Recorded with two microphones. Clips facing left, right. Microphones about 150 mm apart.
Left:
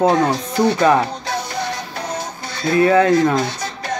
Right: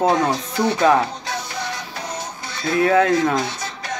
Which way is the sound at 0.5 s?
35° left (ahead or behind).